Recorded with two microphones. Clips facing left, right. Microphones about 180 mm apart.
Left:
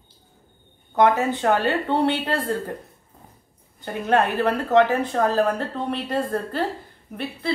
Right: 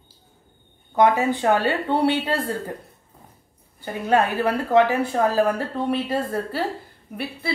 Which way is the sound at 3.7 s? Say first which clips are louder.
Even; 10° right (ahead or behind).